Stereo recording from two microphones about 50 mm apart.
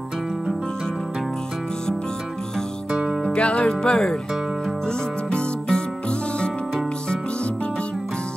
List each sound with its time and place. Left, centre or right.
2.9 s music: centre
3.3 s music: left